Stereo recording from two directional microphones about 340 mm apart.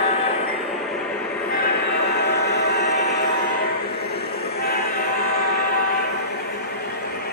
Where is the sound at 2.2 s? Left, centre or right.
Left.